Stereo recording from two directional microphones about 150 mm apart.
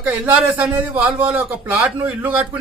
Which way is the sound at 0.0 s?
10° right (ahead or behind).